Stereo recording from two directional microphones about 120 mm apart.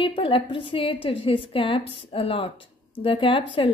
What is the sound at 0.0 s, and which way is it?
Speech, 45° left (ahead or behind).